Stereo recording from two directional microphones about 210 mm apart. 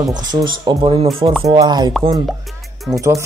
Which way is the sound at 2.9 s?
15° right (ahead or behind).